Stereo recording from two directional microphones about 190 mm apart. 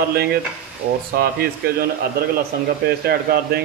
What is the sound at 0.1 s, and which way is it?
Speech, 55° right (ahead or behind).